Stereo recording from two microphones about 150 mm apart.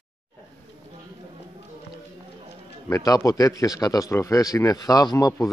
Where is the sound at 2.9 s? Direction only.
20° left (ahead or behind).